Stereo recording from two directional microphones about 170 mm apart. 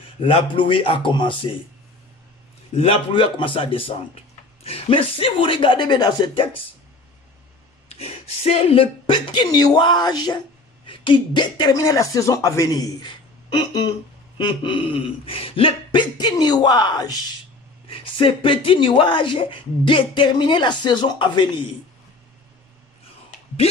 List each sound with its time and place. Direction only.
0.2 s speech: 30° left (ahead or behind)
2.7 s a man's voice: 35° left (ahead or behind)
7.9 s speech: 40° left (ahead or behind)